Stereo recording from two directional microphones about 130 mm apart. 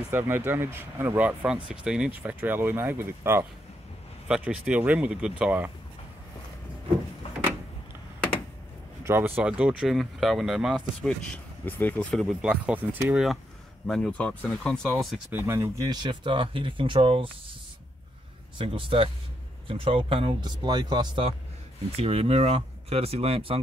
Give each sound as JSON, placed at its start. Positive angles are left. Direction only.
{"t": 0.1, "sound": "speech", "side_deg": -15}
{"t": 9.0, "sound": "speech", "side_deg": -20}
{"t": 15.3, "sound": "speech", "side_deg": -20}
{"t": 15.8, "sound": "speech", "side_deg": -35}
{"t": 18.6, "sound": "speech", "side_deg": -40}